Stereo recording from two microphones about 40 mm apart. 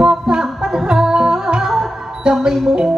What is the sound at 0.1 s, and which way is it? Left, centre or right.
Music, centre.